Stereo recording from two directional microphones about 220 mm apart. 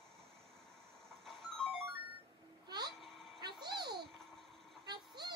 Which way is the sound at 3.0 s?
Centre (ahead or behind).